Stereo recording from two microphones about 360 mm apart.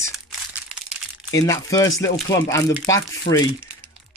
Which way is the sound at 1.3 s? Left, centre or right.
Centre.